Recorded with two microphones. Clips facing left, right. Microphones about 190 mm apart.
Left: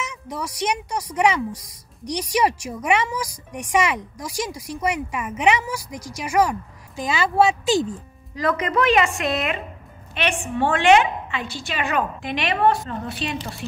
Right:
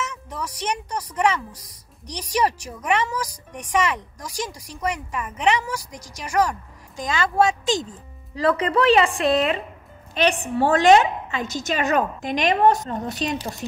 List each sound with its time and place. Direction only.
0.0 s a sound: 10° left (ahead or behind)
0.6 s speech: 10° left (ahead or behind)
8.4 s a woman's voice: 30° right (ahead or behind)